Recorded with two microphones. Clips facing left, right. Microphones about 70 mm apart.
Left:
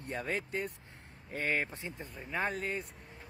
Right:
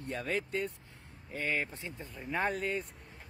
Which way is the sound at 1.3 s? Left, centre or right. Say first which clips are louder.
Left 1 dB; left.